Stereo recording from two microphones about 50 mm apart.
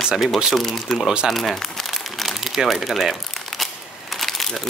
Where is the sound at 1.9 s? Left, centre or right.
Centre.